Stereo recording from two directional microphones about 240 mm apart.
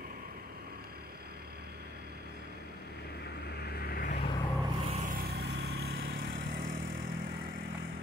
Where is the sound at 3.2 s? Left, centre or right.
Left.